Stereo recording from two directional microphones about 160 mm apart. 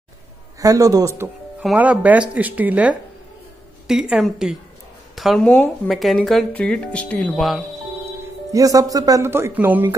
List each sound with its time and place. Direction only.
0.6 s a man's voice: 20° right (ahead or behind)
1.6 s speech: 5° right (ahead or behind)
8.5 s speech: 20° right (ahead or behind)